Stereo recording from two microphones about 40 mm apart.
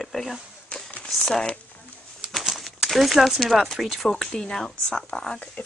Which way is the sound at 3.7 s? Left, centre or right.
Centre.